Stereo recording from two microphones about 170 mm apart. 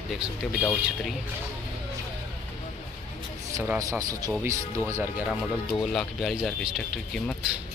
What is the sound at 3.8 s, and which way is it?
Speech, 20° right (ahead or behind).